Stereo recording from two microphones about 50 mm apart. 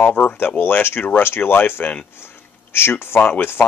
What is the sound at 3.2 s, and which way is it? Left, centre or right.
Speech, left.